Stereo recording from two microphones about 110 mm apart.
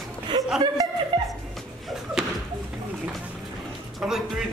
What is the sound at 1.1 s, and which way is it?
Music, 40° right (ahead or behind).